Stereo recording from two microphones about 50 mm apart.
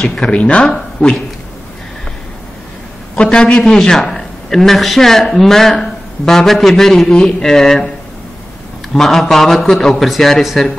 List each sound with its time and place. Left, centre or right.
0.0 s a man's voice: centre
3.2 s a man's voice: centre
8.9 s a man's voice: centre